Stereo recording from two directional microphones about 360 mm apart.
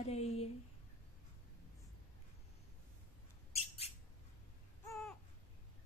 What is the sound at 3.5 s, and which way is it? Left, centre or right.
Bird, centre.